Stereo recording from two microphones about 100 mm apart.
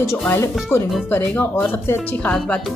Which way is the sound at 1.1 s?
15° left (ahead or behind).